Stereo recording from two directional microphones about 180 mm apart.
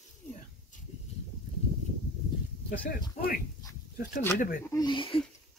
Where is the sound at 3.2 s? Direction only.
40° left (ahead or behind).